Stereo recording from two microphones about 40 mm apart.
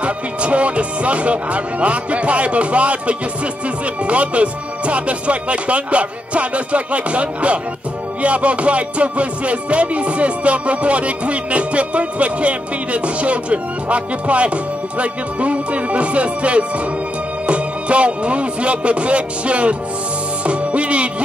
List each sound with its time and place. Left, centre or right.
0.0 s music: right
17.5 s speech: right
20.4 s music: right